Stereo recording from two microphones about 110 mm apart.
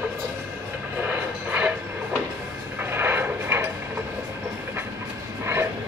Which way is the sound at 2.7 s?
20° right (ahead or behind).